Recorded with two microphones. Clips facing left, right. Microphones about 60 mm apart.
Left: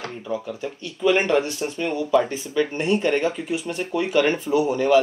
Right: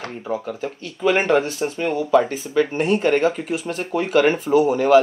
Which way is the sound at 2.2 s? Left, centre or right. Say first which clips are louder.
Right 3 dB; right.